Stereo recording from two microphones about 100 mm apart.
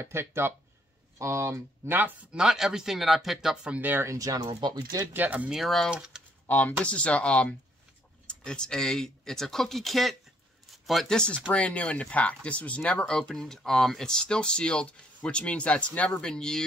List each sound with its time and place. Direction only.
0.0 s speech: 25° right (ahead or behind)
2.3 s speech: 5° right (ahead or behind)
4.1 s speech: 35° right (ahead or behind)
4.5 s speech: 45° right (ahead or behind)
5.1 s speech: 15° right (ahead or behind)
5.5 s speech: centre (ahead or behind)
6.4 s speech: 15° left (ahead or behind)